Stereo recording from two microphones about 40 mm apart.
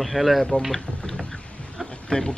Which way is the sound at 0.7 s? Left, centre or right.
Centre.